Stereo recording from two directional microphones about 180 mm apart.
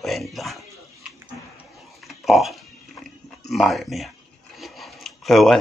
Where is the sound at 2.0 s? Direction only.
Centre (ahead or behind).